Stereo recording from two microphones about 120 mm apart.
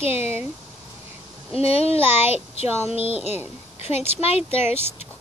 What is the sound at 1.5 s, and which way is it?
Child singing, 55° left (ahead or behind).